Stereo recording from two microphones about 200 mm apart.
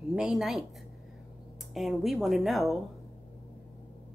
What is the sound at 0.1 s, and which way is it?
Speech, 5° right (ahead or behind).